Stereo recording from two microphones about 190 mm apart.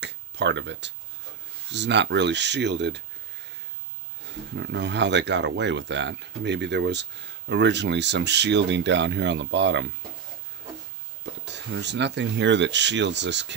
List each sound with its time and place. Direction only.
0.0 s a sound: 65° right (ahead or behind)
1.7 s speech: 65° right (ahead or behind)
4.6 s speech: 65° right (ahead or behind)
11.4 s speech: 65° right (ahead or behind)